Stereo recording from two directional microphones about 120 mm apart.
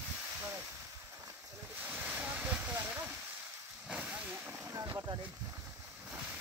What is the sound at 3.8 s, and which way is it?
Vehicle, 10° right (ahead or behind).